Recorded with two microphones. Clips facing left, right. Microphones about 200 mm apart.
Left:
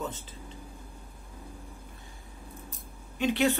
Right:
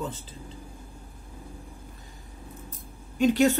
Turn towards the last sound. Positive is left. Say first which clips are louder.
# right 5 dB
turn(degrees=-45)  # may be behind; listen again after turning